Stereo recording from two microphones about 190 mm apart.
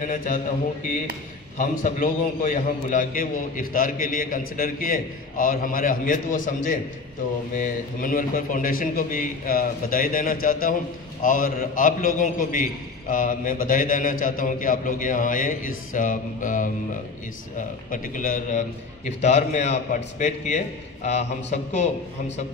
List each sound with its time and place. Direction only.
0.0 s a man's voice: 45° left (ahead or behind)
1.6 s a man's voice: 45° left (ahead or behind)